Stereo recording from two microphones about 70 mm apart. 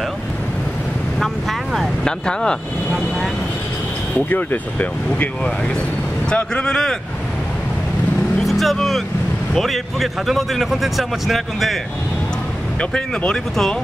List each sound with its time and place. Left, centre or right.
1.2 s vehicle: centre
2.2 s speech: centre
4.3 s speech: left
6.3 s speech: centre
8.4 s speech: centre
12.9 s speech: centre